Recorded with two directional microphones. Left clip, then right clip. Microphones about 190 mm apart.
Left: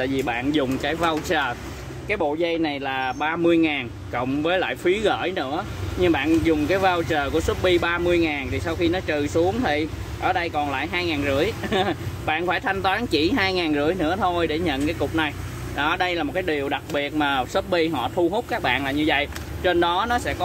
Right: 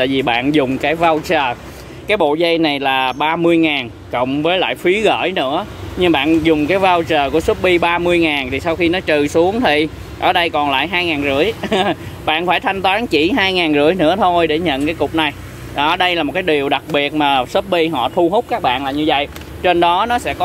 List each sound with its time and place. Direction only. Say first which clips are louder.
0.0 s speech: right 9 dB; 45° right (ahead or behind); by 1.5 s 30° right (ahead or behind)
2.0 s speech: right 9 dB; 45° right (ahead or behind)